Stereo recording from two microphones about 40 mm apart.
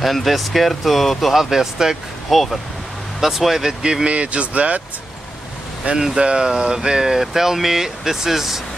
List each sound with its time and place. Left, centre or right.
0.0 s speech: centre
2.2 s speech: centre
3.8 s speech: right
5.9 s speech: centre